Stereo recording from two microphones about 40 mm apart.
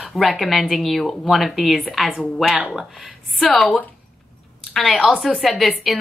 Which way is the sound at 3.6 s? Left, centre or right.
Left.